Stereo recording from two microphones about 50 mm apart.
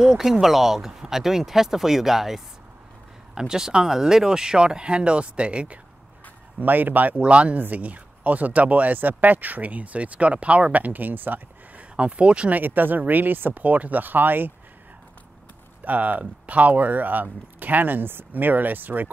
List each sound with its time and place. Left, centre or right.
0.0 s speech: centre
6.6 s speech: right
7.2 s speech: right
12.5 s speech: right
15.8 s speech: right